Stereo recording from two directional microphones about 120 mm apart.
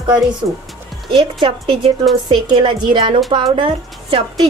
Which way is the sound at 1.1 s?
45° right (ahead or behind).